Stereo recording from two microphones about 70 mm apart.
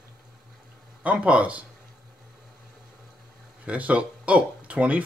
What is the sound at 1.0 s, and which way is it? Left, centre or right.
Speech, centre.